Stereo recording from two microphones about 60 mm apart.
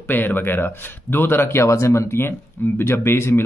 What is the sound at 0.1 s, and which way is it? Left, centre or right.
Speech, left.